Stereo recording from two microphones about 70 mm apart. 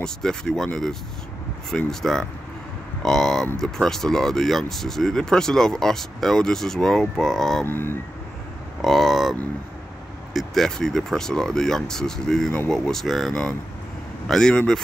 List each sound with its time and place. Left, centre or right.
0.0 s speech: centre
1.9 s speech: centre
7.6 s speech: left
8.8 s speech: centre